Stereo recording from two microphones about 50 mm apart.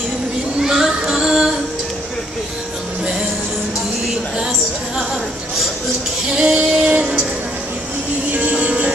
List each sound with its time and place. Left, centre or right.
0.6 s child singing: centre
6.3 s music: centre
8.3 s music: right